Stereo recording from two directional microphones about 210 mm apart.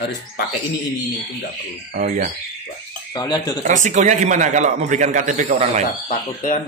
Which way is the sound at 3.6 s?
35° right (ahead or behind).